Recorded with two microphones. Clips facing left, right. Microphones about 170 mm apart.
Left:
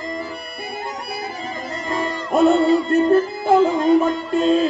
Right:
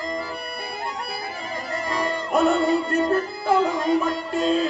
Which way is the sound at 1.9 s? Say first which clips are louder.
Left 2 dB; 25° left (ahead or behind).